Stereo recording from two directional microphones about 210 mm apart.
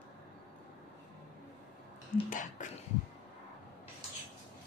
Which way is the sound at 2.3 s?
35° left (ahead or behind).